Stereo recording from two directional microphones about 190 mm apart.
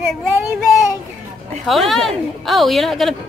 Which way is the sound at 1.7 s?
Centre (ahead or behind).